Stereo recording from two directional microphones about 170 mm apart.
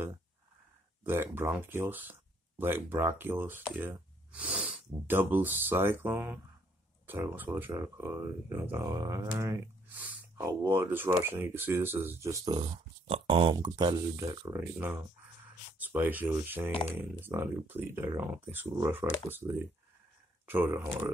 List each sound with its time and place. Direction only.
1.0 s speech: 10° right (ahead or behind)